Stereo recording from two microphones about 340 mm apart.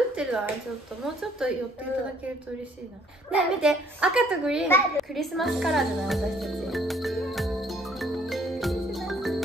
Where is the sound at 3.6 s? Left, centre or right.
Centre.